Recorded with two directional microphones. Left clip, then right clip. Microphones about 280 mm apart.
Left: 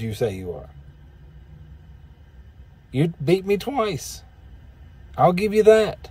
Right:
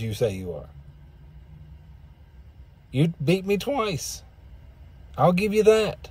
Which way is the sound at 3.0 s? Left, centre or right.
Centre.